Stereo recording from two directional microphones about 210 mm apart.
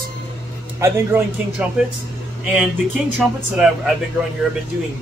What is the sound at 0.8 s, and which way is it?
A man's voice, 10° right (ahead or behind).